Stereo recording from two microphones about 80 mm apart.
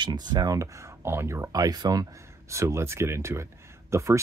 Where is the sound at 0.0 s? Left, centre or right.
Right.